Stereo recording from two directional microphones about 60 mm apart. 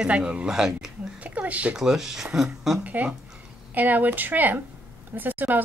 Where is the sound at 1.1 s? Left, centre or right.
Right.